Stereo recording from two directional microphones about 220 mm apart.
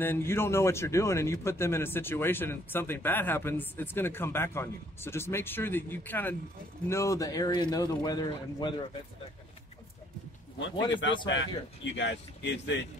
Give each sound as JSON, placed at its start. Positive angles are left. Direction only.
{"t": 0.0, "sound": "speech", "side_deg": 10}
{"t": 10.9, "sound": "speech", "side_deg": 55}